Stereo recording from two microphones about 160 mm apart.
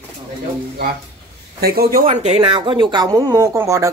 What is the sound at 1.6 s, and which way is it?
Speech, 70° right (ahead or behind).